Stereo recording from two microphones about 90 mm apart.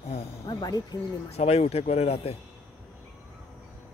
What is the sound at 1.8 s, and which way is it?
Speech, 90° left.